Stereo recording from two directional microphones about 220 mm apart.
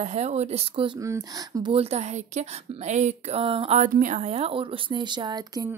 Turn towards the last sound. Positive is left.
turn(degrees=-15)  # may be behind; listen again after turning